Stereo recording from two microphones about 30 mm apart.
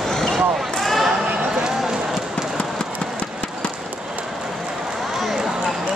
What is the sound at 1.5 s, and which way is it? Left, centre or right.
Run, right.